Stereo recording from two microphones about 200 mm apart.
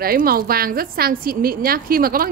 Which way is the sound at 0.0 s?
50° right (ahead or behind).